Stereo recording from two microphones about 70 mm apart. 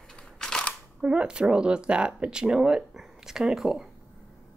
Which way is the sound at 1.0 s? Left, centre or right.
Centre.